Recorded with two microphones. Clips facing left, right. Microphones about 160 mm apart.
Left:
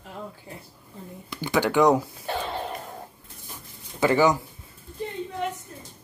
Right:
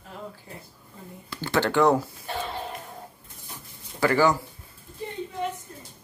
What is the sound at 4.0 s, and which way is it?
Speech, 20° left (ahead or behind).